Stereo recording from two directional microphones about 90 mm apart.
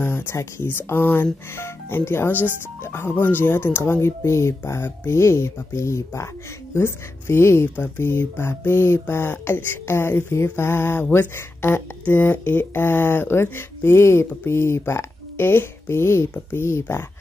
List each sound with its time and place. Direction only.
0.0 s speech: 25° left (ahead or behind)